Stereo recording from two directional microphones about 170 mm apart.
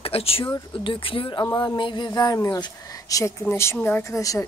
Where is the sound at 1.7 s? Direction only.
25° left (ahead or behind).